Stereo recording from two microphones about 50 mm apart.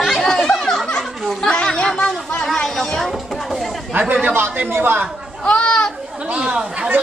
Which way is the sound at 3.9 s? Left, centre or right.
Right.